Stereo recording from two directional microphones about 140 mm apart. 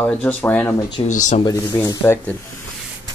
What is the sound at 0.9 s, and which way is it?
Speech, 60° left (ahead or behind).